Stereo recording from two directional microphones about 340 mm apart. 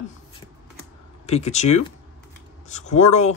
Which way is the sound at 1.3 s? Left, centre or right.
Centre.